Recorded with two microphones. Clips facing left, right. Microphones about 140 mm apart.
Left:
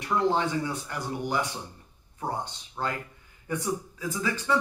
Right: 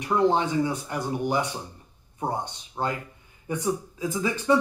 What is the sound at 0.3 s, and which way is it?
Speech, 20° right (ahead or behind).